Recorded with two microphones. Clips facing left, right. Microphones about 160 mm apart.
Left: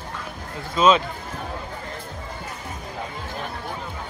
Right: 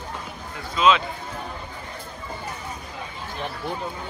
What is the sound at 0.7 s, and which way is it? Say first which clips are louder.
Speech: left 2 dB; 40° left (ahead or behind).